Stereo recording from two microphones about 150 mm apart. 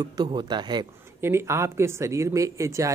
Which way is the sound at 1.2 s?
15° right (ahead or behind).